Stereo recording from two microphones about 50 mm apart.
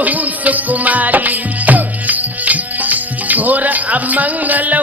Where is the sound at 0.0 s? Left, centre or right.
Right.